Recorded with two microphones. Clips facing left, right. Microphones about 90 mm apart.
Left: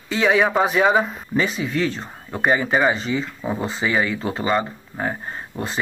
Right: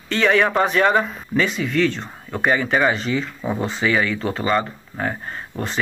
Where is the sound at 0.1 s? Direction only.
5° left (ahead or behind).